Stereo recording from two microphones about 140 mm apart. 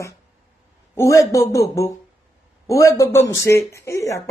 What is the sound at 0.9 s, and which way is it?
Speech, 20° left (ahead or behind).